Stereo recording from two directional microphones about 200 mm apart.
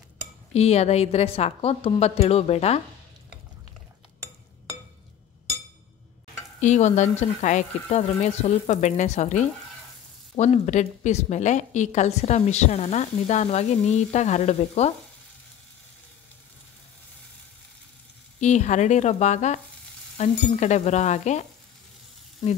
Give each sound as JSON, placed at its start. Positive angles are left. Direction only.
{"t": 0.5, "sound": "a woman's voice", "side_deg": 30}
{"t": 6.6, "sound": "a woman's voice", "side_deg": 35}
{"t": 18.4, "sound": "a woman's voice", "side_deg": 35}